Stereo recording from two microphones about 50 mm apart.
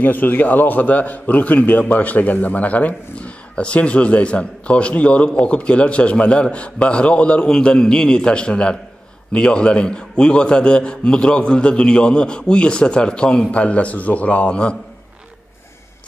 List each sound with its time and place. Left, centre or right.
0.0 s a man's voice: left